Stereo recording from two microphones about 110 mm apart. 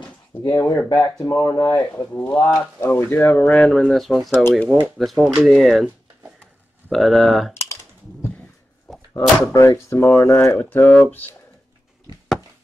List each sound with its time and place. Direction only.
0.4 s speech: 30° left (ahead or behind)
1.8 s speech: 15° left (ahead or behind); by 4.4 s centre (ahead or behind)
4.4 s speech: 20° left (ahead or behind)
4.6 s speech: centre (ahead or behind)
6.9 s speech: centre (ahead or behind)
7.5 s typing: 25° left (ahead or behind)
8.9 s a sound: centre (ahead or behind)
9.5 s speech: 25° left (ahead or behind)